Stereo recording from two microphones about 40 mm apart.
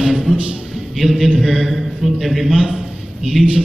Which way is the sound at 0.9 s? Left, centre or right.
Centre.